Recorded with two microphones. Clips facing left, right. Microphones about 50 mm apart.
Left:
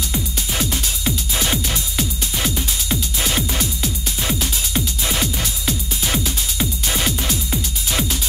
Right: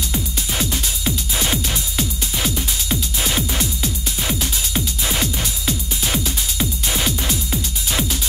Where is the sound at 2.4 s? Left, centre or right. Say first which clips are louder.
Even; centre.